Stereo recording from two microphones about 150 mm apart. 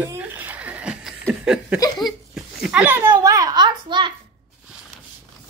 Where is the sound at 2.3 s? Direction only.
5° right (ahead or behind); by 4.1 s 30° right (ahead or behind).